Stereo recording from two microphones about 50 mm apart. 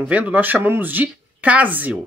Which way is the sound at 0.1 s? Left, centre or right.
Right.